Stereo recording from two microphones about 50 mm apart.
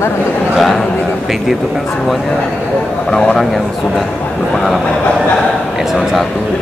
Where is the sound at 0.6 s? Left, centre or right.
Centre.